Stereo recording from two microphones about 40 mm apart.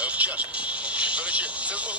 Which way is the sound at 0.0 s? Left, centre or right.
Right.